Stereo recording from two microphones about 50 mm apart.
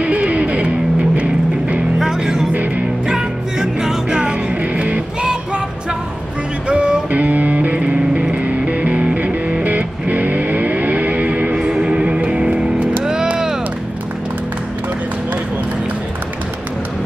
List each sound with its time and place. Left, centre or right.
0.0 s music: right
2.0 s music: centre
6.7 s music: right
13.0 s vehicle: centre